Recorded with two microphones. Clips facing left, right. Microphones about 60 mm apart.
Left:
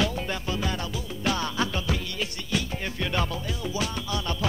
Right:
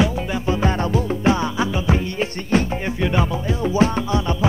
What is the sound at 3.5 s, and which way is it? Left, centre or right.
Music, right.